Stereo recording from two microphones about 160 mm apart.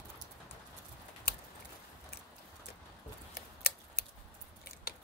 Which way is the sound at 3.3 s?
70° left (ahead or behind).